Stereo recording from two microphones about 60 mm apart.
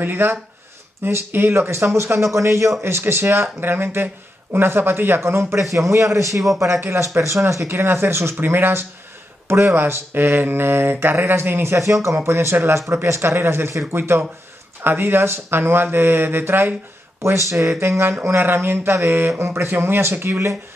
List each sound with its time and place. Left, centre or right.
0.0 s speech: right
2.3 s a man's voice: right
2.8 s speech: right
3.6 s speech: right
5.6 s a man's voice: right
6.3 s a man's voice: centre
7.2 s speech: right
11.8 s speech: right